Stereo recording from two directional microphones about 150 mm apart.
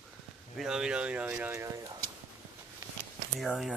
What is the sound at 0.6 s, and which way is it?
Speech, 5° right (ahead or behind).